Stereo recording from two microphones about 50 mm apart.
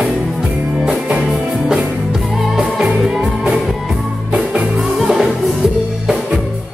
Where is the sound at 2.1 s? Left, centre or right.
Centre.